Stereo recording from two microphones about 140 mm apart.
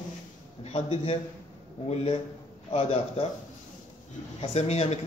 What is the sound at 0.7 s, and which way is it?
Speech, 45° left (ahead or behind).